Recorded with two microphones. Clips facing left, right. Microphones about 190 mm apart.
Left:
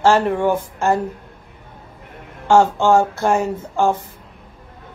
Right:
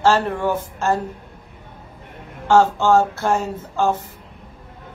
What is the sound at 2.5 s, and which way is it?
Speech, 15° left (ahead or behind).